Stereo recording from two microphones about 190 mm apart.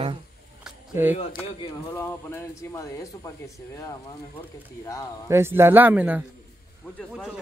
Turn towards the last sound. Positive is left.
turn(degrees=0)  # may be behind; listen again after turning